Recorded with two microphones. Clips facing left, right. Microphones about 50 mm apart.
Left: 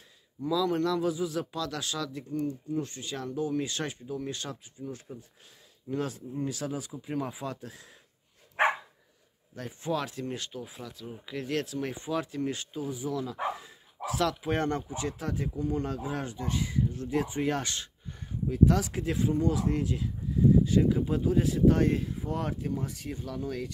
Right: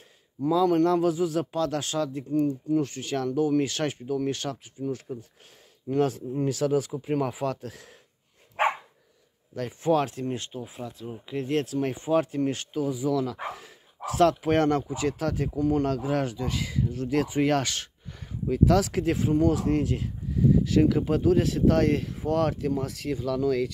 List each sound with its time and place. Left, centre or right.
0.5 s a man's voice: right
2.7 s speech: right
5.9 s a man's voice: right
9.8 s speech: right
10.5 s speech: right
11.6 s a man's voice: right
12.7 s speech: right
18.7 s speech: right
19.0 s speech: right